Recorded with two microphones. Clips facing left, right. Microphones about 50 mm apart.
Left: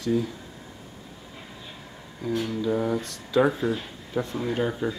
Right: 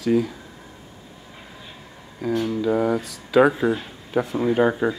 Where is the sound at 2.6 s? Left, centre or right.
Right.